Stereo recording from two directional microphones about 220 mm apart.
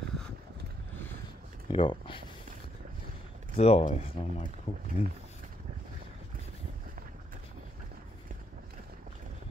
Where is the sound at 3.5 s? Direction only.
30° left (ahead or behind).